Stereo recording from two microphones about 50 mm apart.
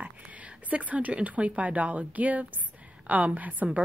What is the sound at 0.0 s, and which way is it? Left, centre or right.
A woman's voice, right.